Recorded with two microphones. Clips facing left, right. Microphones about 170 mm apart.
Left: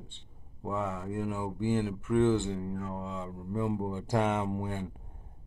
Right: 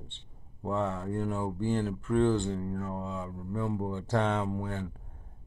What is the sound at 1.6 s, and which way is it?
Speech, 20° left (ahead or behind).